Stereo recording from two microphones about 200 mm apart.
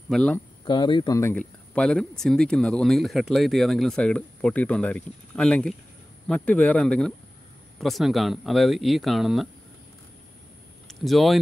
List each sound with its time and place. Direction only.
0.1 s speech: 5° left (ahead or behind)
0.7 s speech: 25° left (ahead or behind); by 9.5 s centre (ahead or behind)
10.9 s speech: centre (ahead or behind)